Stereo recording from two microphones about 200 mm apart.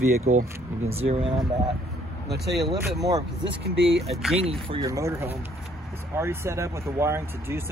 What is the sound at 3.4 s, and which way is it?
Speech, 65° right (ahead or behind).